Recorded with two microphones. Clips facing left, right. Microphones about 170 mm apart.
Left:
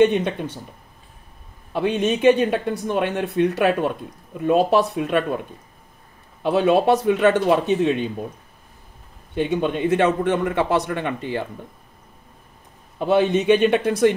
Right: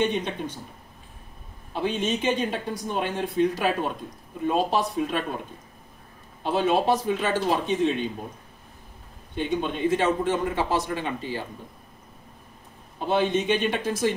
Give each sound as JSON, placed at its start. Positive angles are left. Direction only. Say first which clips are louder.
{"t": 0.0, "sound": "speech", "louder": "left 8 dB", "side_deg": 65}
{"t": 1.7, "sound": "speech", "louder": "left 5 dB", "side_deg": 65}
{"t": 6.4, "sound": "speech", "louder": "left 6 dB", "side_deg": 60}
{"t": 9.3, "sound": "speech", "louder": "left 5 dB", "side_deg": 60}
{"t": 13.0, "sound": "speech", "louder": "left 6 dB", "side_deg": 60}